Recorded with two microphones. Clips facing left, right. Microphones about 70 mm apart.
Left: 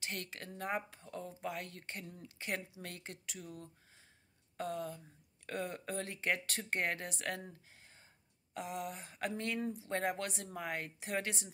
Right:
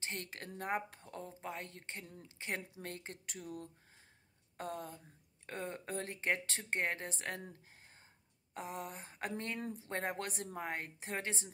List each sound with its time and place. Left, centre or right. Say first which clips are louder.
0.0 s speech: left 1 dB; right
0.3 s a woman's voice: right 1 dB; right
1.2 s speech: left 2 dB; right
3.3 s speech: right 2 dB; right
5.5 s speech: left 2 dB; right
7.7 s a sound: even; right
8.5 s a woman's voice: left 2 dB; right
9.6 s speech: left 4 dB; right
9.8 s a woman's voice: left 1 dB; right